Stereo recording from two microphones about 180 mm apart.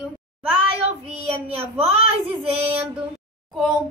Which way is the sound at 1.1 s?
35° right (ahead or behind).